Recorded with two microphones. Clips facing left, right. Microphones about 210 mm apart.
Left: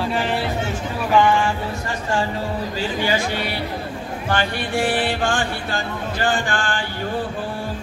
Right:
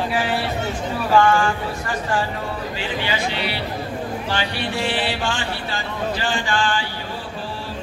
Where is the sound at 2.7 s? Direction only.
45° left (ahead or behind).